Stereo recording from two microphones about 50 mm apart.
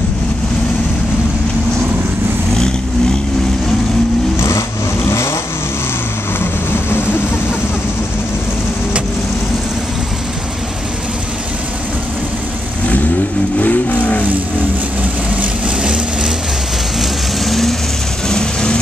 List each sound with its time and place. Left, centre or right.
4.4 s vehicle: left
6.4 s vehicle: left
13.6 s vehicle: left
15.8 s vehicle: right
17.0 s vehicle: centre
18.3 s vehicle: centre